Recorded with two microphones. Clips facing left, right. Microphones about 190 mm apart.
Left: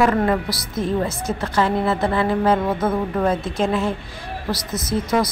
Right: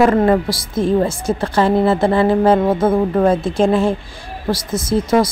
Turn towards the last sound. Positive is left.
turn(degrees=-30)  # may be behind; listen again after turning